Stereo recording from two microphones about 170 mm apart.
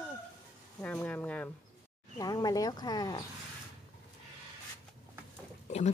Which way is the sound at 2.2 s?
20° left (ahead or behind).